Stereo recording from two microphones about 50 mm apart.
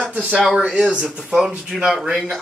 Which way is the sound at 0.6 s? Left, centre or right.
Centre.